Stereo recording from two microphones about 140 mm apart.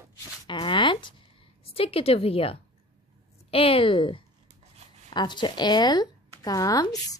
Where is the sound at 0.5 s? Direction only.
35° left (ahead or behind).